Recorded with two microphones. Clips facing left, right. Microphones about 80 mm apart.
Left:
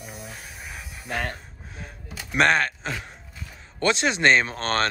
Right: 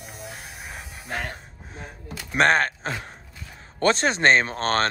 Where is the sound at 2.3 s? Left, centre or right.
Right.